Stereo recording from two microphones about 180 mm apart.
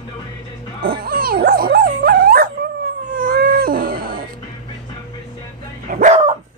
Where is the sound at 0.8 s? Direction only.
55° right (ahead or behind).